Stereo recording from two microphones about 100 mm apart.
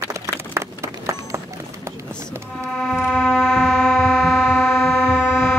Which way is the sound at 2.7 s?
5° left (ahead or behind).